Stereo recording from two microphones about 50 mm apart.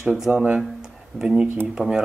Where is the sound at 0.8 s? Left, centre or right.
Centre.